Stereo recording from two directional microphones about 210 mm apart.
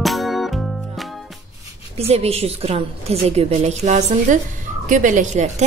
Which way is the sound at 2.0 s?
30° right (ahead or behind).